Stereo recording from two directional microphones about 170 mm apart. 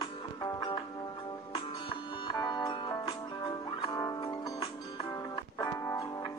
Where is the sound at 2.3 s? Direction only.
25° left (ahead or behind).